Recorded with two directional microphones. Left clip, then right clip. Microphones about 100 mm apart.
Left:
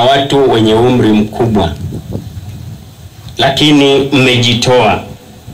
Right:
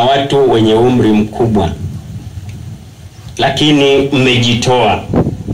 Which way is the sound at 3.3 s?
35° left (ahead or behind).